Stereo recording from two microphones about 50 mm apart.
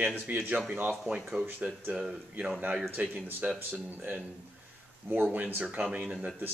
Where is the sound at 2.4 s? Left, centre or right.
Right.